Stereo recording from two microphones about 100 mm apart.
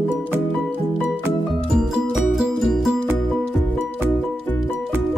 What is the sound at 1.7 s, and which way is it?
Music, 5° right (ahead or behind).